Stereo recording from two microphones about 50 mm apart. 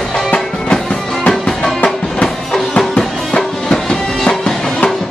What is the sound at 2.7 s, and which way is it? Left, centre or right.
Music, centre.